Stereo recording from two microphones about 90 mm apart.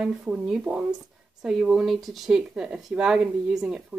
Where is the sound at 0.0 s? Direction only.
10° right (ahead or behind).